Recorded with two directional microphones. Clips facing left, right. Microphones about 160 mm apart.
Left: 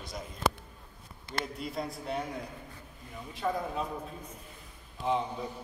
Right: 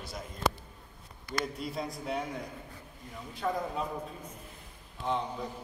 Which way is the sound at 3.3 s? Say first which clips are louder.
Even; centre (ahead or behind).